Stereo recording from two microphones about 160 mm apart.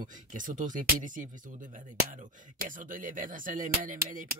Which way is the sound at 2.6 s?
60° right (ahead or behind).